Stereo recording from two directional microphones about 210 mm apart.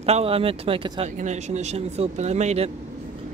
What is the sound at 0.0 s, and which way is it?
Speech, 30° right (ahead or behind).